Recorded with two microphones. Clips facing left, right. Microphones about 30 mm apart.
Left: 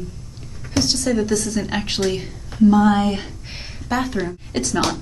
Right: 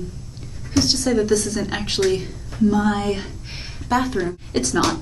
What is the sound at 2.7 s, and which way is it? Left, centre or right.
Speech, centre.